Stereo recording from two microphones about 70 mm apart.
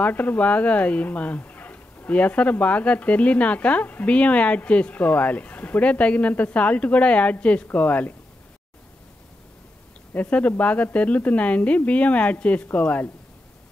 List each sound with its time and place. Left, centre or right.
0.0 s speech: left
10.1 s speech: left